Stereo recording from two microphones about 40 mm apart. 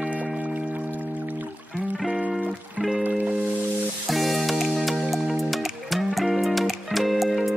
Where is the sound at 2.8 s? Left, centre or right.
Right.